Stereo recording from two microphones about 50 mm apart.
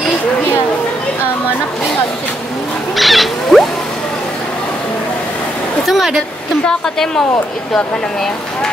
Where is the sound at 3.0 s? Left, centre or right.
Centre.